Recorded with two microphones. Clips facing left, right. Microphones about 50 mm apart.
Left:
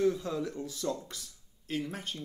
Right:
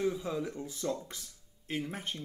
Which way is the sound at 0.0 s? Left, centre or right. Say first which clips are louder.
Left 3 dB; centre.